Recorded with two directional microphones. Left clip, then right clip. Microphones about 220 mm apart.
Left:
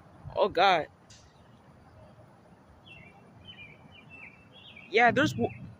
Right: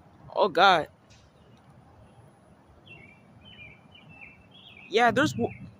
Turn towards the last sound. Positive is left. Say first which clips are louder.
# right 1 dB
turn(degrees=-20)  # may be behind; listen again after turning